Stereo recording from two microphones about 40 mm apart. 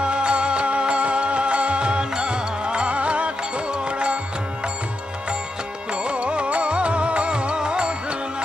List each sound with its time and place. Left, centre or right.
0.0 s music: right
6.0 s music: right